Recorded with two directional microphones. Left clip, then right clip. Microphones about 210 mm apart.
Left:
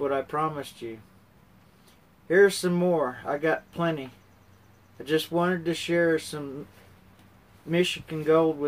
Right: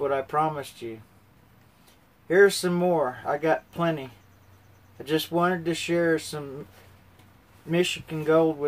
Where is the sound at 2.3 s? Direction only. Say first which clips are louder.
Right 1 dB; 5° right (ahead or behind).